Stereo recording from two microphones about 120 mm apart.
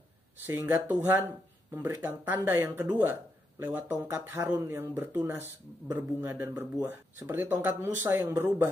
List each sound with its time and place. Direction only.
0.5 s speech: 15° right (ahead or behind)